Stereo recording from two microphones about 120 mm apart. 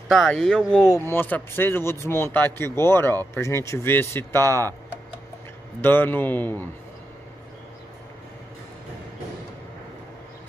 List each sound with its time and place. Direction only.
0.1 s speech: 5° left (ahead or behind)
1.0 s speech: 15° left (ahead or behind)
5.8 s a man's voice: 20° left (ahead or behind)